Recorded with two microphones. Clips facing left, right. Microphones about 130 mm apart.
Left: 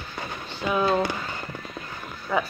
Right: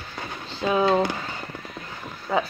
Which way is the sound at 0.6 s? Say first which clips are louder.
Right 3 dB; 25° right (ahead or behind).